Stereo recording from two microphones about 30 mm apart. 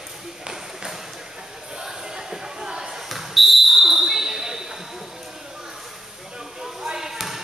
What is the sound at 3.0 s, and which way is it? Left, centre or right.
Basketball bounce, centre.